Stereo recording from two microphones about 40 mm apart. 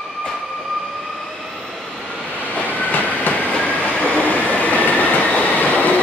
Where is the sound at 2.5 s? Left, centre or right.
Left.